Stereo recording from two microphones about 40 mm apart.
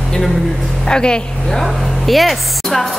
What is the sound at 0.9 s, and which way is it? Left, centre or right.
Speech, left.